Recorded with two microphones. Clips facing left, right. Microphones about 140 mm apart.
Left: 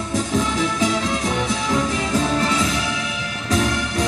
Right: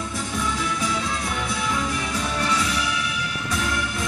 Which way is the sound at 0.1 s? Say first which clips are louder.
Left 10 dB; 90° left.